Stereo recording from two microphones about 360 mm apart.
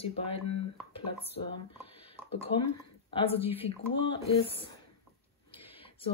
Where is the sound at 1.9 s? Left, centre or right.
Centre.